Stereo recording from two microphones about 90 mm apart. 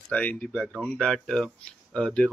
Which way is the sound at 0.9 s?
5° left (ahead or behind).